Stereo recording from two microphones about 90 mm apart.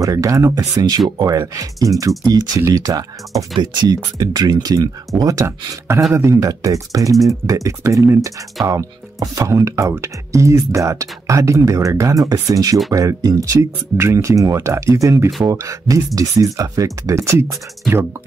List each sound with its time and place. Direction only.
0.0 s speech: 40° right (ahead or behind)